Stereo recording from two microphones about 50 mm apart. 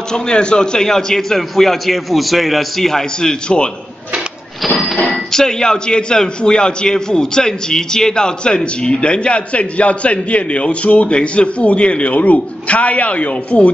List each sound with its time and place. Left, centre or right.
0.1 s a man's voice: centre
4.7 s a man's voice: centre; by 13.7 s left